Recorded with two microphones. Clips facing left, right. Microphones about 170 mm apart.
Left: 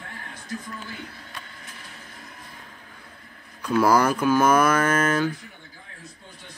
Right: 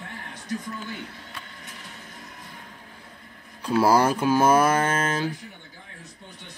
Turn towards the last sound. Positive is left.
turn(degrees=-30)  # may be behind; listen again after turning